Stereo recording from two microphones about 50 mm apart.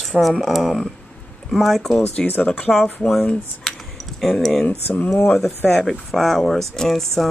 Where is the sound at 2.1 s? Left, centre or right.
Left.